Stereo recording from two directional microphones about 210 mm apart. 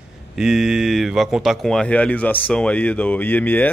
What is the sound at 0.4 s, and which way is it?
Speech, centre (ahead or behind).